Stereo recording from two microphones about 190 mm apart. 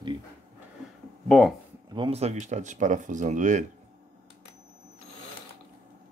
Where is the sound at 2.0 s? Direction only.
30° right (ahead or behind).